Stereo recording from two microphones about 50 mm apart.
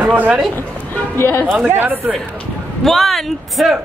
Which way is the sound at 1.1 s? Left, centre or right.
Left.